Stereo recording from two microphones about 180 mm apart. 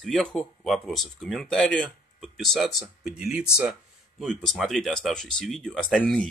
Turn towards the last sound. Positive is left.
turn(degrees=5)  # may be behind; listen again after turning